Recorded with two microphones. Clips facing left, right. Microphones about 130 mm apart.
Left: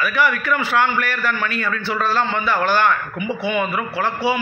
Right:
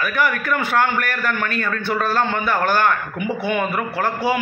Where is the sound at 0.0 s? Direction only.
50° right (ahead or behind).